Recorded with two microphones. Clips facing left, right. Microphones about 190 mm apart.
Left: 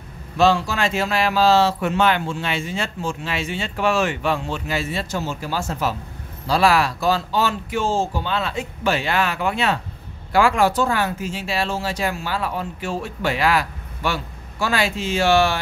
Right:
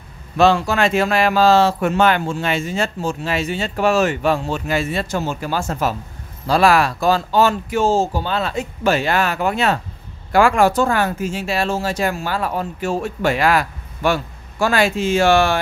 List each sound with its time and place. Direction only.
0.4 s speech: 55° right (ahead or behind)